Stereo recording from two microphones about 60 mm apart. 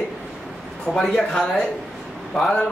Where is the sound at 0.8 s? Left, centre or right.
Centre.